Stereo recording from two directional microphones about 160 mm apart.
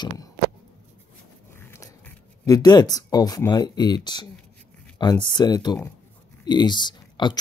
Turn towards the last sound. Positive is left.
turn(degrees=30)  # may be behind; listen again after turning